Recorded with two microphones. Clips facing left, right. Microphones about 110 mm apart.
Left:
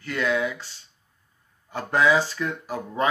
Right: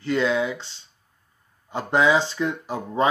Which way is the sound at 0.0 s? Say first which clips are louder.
Right 3 dB; 25° right (ahead or behind).